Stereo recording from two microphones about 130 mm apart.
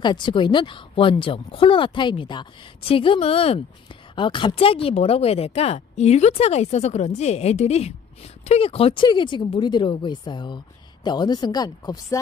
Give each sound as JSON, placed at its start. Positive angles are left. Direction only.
{"t": 0.0, "sound": "speech", "side_deg": 35}